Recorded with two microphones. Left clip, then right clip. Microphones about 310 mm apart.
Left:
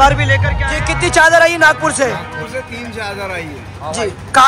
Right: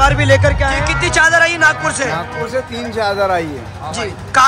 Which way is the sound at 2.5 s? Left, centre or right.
Centre.